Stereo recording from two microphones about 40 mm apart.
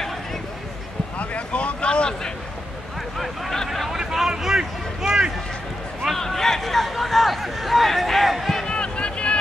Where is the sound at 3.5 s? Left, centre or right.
Centre.